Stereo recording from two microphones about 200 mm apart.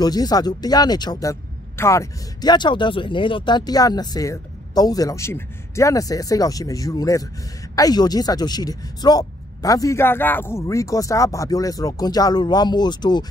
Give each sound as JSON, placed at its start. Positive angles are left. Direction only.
{"t": 0.0, "sound": "speech", "side_deg": 20}